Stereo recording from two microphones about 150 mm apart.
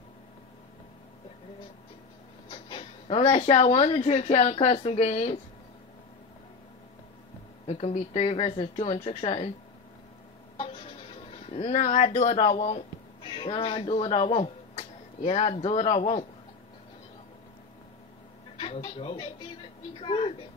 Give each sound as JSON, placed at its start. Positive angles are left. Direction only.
{"t": 2.5, "sound": "speech", "side_deg": 35}
{"t": 7.6, "sound": "speech", "side_deg": 45}
{"t": 10.6, "sound": "a sound", "side_deg": 35}
{"t": 13.2, "sound": "speech", "side_deg": 35}
{"t": 18.6, "sound": "speech", "side_deg": 35}